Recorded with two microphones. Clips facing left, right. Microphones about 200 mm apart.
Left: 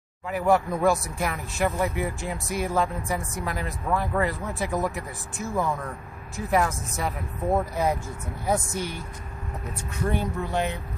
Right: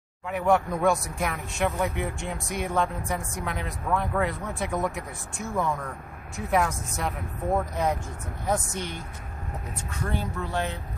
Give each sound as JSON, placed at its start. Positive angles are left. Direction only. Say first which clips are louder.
{"t": 0.3, "sound": "speech", "louder": "left 1 dB", "side_deg": 0}
{"t": 10.0, "sound": "speech", "louder": "left 4 dB", "side_deg": 15}